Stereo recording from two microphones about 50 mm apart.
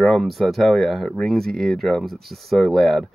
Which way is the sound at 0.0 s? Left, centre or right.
Centre.